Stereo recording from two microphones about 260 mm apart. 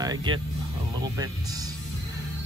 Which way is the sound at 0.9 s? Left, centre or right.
Centre.